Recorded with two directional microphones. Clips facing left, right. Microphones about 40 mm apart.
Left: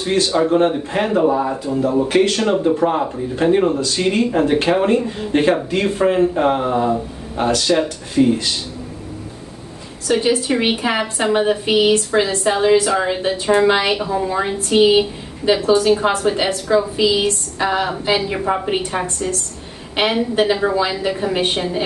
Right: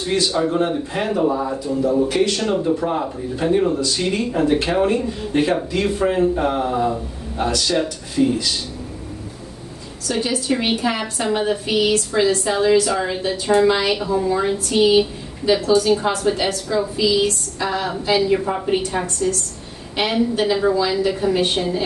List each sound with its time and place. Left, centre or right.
0.0 s speech: left
0.5 s speech: left
10.0 s a woman's voice: left